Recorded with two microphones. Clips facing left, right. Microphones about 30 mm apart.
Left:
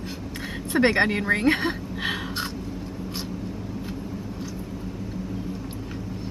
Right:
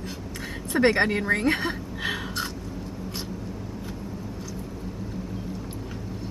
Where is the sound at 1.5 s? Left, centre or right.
Centre.